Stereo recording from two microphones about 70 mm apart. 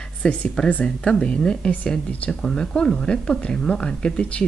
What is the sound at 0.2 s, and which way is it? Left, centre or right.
Speech, centre.